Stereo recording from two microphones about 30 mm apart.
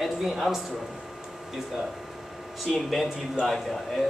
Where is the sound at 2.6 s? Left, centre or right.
Centre.